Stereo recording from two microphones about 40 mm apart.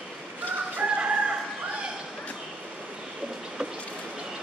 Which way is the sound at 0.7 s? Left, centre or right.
Right.